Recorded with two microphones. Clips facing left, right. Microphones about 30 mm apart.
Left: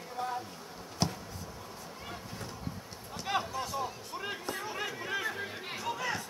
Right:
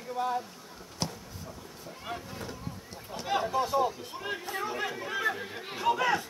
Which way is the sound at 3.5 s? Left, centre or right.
Right.